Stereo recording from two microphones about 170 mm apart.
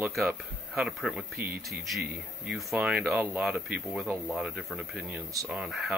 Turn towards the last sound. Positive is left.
turn(degrees=0)  # may be behind; listen again after turning